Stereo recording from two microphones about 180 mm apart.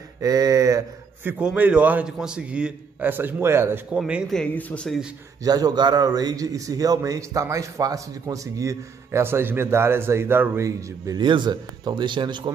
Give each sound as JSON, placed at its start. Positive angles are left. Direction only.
{"t": 0.2, "sound": "speech", "side_deg": -20}
{"t": 1.4, "sound": "a man's voice", "side_deg": -5}
{"t": 4.0, "sound": "speech", "side_deg": 0}
{"t": 5.4, "sound": "a man's voice", "side_deg": -20}